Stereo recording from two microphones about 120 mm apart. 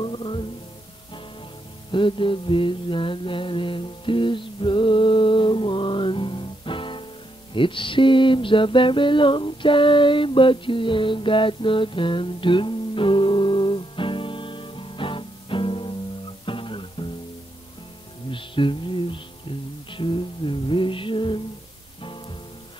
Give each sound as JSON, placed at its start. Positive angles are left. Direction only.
{"t": 0.0, "sound": "music", "side_deg": 45}
{"t": 1.9, "sound": "mantra", "side_deg": 45}
{"t": 16.4, "sound": "music", "side_deg": 45}
{"t": 18.3, "sound": "music", "side_deg": 45}